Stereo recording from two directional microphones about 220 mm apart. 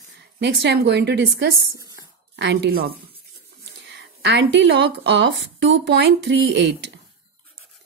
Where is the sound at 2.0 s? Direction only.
50° right (ahead or behind).